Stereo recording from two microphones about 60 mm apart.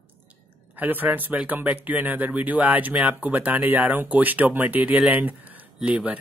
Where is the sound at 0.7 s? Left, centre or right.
Right.